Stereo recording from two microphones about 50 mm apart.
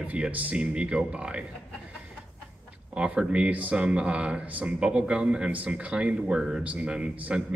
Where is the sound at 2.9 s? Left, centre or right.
Right.